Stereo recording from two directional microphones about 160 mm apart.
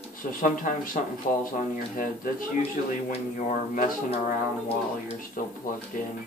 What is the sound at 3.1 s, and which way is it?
Speech, 50° left (ahead or behind).